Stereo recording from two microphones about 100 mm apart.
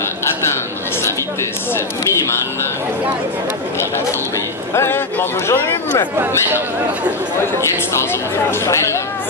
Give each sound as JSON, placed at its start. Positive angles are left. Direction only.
{"t": 2.2, "sound": "speech", "side_deg": 25}
{"t": 4.7, "sound": "speech", "side_deg": 25}
{"t": 7.9, "sound": "speech", "side_deg": 25}